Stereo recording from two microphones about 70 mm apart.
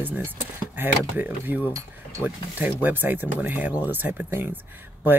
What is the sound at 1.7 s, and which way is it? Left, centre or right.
Cutlery, right.